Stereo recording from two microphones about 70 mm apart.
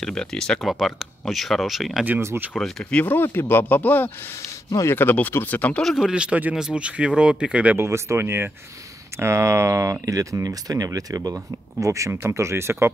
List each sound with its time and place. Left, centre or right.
0.0 s speech: centre
2.8 s speech: centre
5.9 s speech: centre
7.8 s speech: right
12.1 s speech: right